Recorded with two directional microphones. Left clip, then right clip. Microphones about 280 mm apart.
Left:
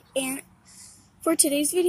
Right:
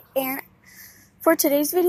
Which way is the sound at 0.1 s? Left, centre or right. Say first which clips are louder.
Right 4 dB; centre.